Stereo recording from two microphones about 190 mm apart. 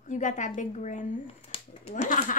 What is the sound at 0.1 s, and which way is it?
A woman's voice, 40° left (ahead or behind).